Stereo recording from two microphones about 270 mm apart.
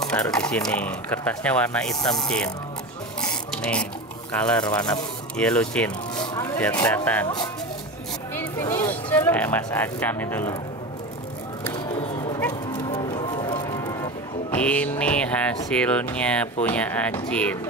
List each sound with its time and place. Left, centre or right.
0.0 s speech: centre
3.2 s a sound: centre
4.4 s speech: centre
8.4 s speech: centre
11.9 s music: left
12.4 s music: centre
13.1 s music: centre
14.5 s speech: centre